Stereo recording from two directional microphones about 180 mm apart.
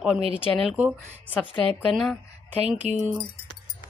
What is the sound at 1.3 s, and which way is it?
Speech, 10° left (ahead or behind).